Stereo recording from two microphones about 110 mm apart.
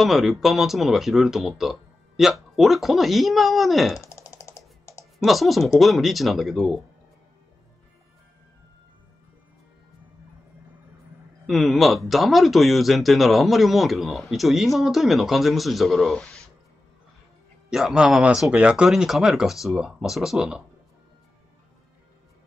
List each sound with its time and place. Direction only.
0.0 s speech: 5° right (ahead or behind)
4.0 s a sound: 25° left (ahead or behind)
5.2 s speech: centre (ahead or behind)
11.4 s speech: centre (ahead or behind)
17.6 s speech: 5° right (ahead or behind)